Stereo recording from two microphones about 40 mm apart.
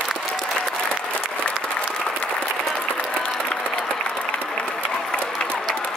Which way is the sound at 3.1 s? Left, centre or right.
Left.